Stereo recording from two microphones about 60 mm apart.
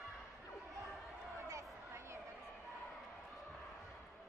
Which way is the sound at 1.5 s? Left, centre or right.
Right.